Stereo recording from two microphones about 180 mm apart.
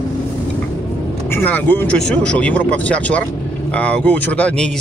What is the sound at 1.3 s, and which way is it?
Speech, 10° left (ahead or behind).